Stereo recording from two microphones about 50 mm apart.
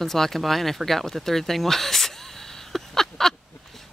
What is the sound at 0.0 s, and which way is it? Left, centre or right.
Speech, centre.